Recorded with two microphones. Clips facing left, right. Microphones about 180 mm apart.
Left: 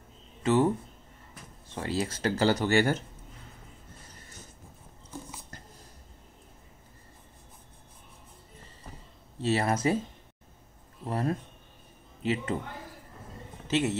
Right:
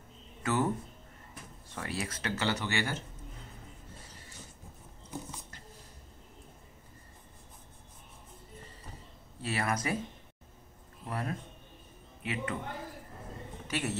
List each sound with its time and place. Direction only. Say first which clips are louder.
0.4 s speech: left 6 dB; 20° left (ahead or behind)
1.8 s speech: left 7 dB; 30° left (ahead or behind)
5.1 s dog: right 1 dB; 15° right (ahead or behind)
9.4 s speech: left 7 dB; 25° left (ahead or behind)
11.1 s speech: left 7 dB; 30° left (ahead or behind)
13.7 s a man's voice: left 7 dB; 20° left (ahead or behind)